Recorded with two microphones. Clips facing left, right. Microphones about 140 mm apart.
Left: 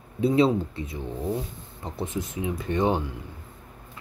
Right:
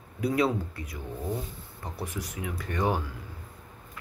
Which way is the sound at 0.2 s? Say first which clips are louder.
Left 5 dB; 25° left (ahead or behind).